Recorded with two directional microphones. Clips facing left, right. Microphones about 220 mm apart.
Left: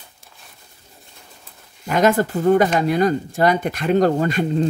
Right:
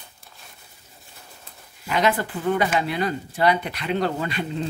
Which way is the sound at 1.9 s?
45° left (ahead or behind).